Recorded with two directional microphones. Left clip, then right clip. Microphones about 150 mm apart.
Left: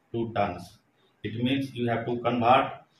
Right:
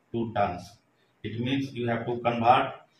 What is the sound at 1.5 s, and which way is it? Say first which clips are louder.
Speech: right 1 dB; 15° left (ahead or behind).